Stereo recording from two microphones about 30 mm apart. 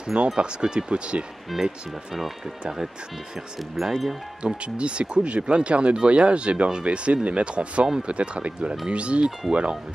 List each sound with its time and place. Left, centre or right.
0.0 s speech: right
1.5 s speech: centre
3.8 s speech: centre
4.6 s speech: right